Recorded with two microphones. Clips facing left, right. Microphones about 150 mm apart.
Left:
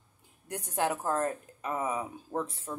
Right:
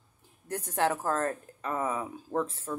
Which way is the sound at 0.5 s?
15° left (ahead or behind).